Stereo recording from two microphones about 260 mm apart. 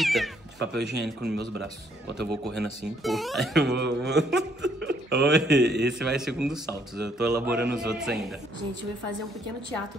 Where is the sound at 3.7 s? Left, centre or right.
Right.